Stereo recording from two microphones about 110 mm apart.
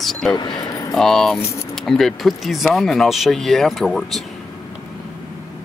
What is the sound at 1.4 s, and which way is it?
Speech, 25° left (ahead or behind).